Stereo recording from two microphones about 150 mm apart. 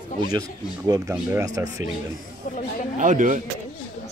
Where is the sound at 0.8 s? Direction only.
25° right (ahead or behind).